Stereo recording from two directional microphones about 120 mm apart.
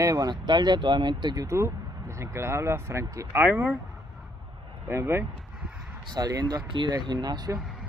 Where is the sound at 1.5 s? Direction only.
25° right (ahead or behind).